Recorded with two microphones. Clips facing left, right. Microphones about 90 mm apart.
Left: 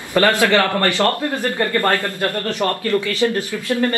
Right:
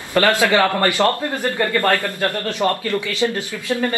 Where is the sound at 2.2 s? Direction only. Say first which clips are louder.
Right 1 dB; 20° right (ahead or behind).